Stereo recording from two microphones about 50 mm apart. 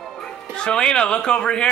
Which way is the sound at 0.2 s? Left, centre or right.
Centre.